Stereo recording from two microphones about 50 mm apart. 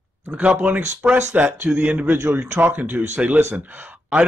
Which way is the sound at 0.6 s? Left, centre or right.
Right.